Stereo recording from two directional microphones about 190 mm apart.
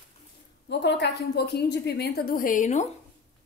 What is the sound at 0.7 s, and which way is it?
A woman's voice, 65° left (ahead or behind).